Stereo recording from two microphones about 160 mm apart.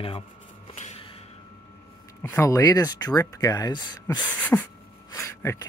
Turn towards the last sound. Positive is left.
turn(degrees=20)  # may be behind; listen again after turning